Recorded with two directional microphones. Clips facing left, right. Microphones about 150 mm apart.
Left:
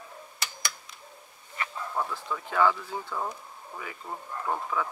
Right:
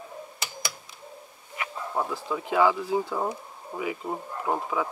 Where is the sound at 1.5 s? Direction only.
15° right (ahead or behind).